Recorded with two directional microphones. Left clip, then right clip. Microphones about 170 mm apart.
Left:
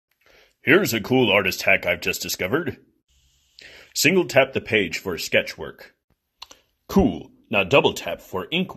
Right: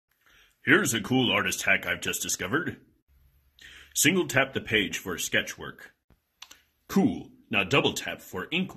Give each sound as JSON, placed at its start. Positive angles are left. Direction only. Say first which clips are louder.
{"t": 0.3, "sound": "speech", "louder": "left 5 dB", "side_deg": 30}
{"t": 3.5, "sound": "a sound", "louder": "left 4 dB", "side_deg": 35}
{"t": 4.2, "sound": "speech", "louder": "left 7 dB", "side_deg": 35}